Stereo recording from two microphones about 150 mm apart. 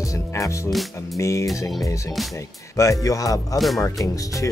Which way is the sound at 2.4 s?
20° left (ahead or behind).